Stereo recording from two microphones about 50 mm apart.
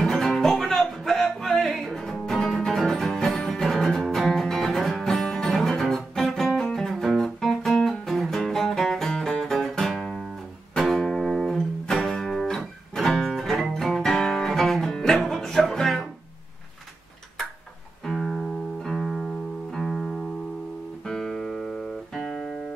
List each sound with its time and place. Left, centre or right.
0.0 s music: centre
18.0 s music: centre